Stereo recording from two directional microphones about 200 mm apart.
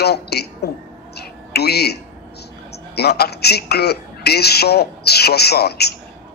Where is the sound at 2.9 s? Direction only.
55° left (ahead or behind).